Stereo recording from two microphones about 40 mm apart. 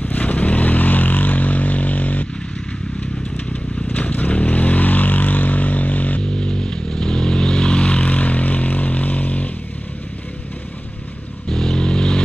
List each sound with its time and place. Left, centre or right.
0.0 s vehicle: left
3.9 s vehicle: left
6.2 s vehicle: left
11.4 s vehicle: centre